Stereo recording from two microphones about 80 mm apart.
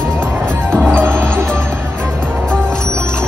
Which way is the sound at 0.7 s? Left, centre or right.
Centre.